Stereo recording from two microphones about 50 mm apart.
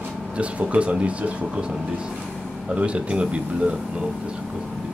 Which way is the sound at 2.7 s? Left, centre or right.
Right.